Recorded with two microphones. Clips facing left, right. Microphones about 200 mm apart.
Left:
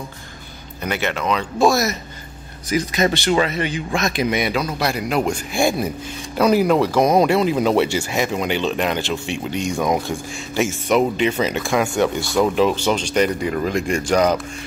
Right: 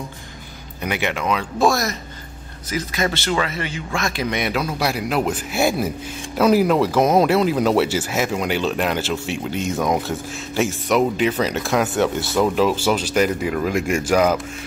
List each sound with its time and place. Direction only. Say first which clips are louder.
0.8 s speech: even; 15° right (ahead or behind); by 2.0 s 5° left (ahead or behind)
2.7 s speech: left 4 dB; 15° left (ahead or behind)
4.3 s speech: left 2 dB; centre (ahead or behind)